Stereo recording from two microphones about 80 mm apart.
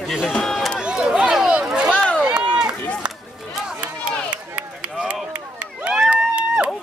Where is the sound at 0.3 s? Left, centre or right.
Centre.